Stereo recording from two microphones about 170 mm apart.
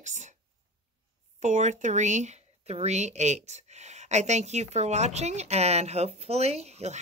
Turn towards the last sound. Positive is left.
turn(degrees=-40)  # may be behind; listen again after turning